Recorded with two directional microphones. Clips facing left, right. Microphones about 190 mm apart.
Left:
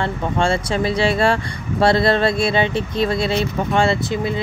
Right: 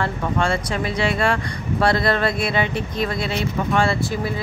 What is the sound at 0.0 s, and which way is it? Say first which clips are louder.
Speech: left 2 dB; 30° left (ahead or behind).